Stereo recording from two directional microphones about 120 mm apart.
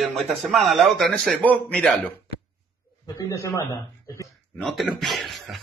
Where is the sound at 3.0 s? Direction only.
30° left (ahead or behind).